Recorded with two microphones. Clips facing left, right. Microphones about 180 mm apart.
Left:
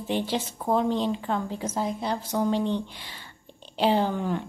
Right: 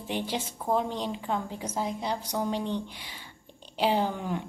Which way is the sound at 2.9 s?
10° right (ahead or behind).